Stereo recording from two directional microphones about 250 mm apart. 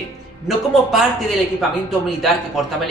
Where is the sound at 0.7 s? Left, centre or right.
Centre.